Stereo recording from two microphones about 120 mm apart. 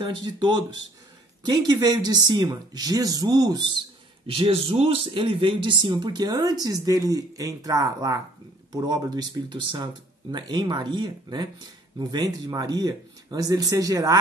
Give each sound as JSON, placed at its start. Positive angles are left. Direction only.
{"t": 0.0, "sound": "speech", "side_deg": -40}
{"t": 4.3, "sound": "speech", "side_deg": -50}